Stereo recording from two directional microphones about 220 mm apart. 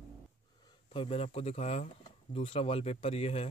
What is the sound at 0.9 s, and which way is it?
Speech, 25° left (ahead or behind).